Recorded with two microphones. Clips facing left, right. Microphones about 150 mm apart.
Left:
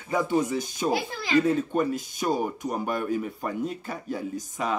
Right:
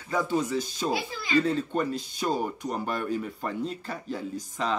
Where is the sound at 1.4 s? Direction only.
10° left (ahead or behind).